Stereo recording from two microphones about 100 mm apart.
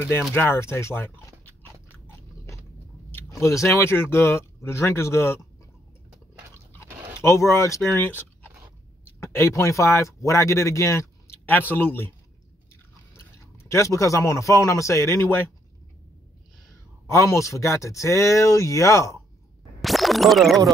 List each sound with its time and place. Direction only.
0.3 s speech: 20° left (ahead or behind)
1.9 s biting: 25° left (ahead or behind)
3.3 s speech: 30° left (ahead or behind)
7.2 s speech: 25° left (ahead or behind)
11.4 s speech: 20° left (ahead or behind)
13.7 s speech: 30° left (ahead or behind)
17.1 s speech: 30° left (ahead or behind)
19.8 s scratch: centre (ahead or behind)